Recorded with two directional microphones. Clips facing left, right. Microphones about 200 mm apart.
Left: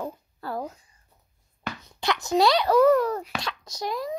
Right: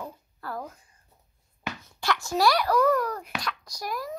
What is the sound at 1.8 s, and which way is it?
A child's voice, 20° left (ahead or behind).